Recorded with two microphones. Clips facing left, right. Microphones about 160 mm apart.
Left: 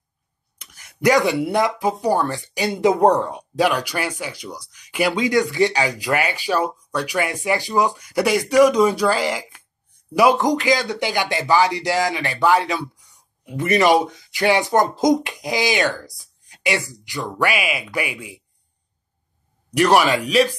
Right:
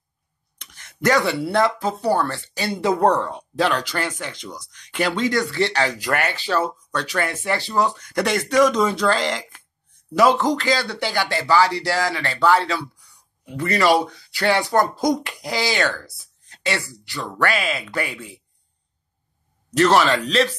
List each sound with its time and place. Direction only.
0.6 s speech: 10° left (ahead or behind)
19.7 s speech: 15° left (ahead or behind)